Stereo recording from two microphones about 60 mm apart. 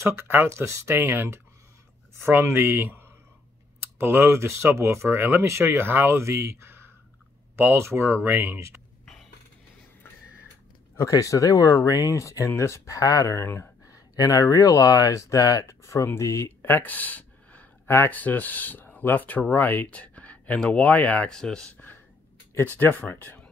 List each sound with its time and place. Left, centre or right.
0.0 s speech: right
0.9 s speech: right
5.1 s speech: right
8.5 s speech: right
11.0 s speech: left
12.2 s speech: left
13.8 s speech: left
16.8 s a sound: left
17.8 s speech: left
18.1 s speech: left
21.3 s speech: centre
22.8 s speech: left